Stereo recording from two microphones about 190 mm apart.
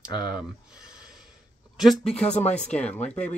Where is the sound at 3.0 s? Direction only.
5° left (ahead or behind).